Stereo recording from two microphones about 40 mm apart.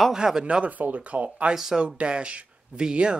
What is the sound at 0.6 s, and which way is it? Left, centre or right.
Speech, right.